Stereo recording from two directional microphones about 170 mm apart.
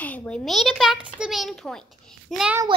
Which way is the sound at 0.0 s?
10° left (ahead or behind).